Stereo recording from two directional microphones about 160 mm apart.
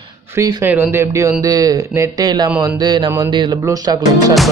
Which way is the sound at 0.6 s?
10° right (ahead or behind).